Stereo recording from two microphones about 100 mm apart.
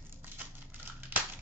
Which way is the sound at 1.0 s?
15° right (ahead or behind).